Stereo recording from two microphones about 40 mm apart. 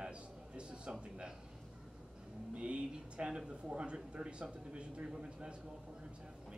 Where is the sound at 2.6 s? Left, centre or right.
Right.